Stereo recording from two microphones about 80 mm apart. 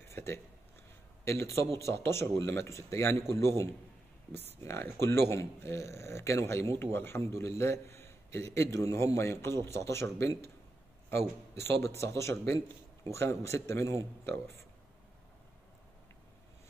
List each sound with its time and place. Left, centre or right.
0.1 s speech: left